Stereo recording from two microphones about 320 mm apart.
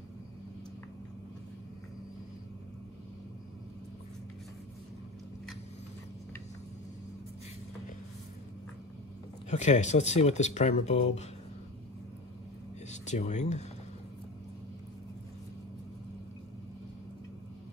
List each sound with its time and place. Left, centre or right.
9.5 s speech: left
12.9 s speech: left